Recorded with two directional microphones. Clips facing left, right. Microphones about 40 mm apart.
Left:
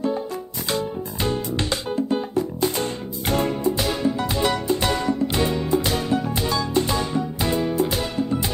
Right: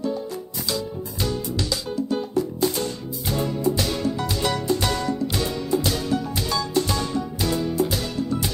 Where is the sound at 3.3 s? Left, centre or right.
Left.